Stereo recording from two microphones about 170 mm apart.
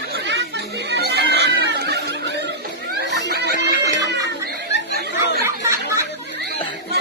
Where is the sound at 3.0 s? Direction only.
85° right.